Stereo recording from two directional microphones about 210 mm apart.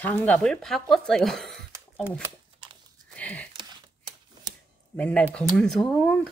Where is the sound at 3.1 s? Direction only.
5° left (ahead or behind).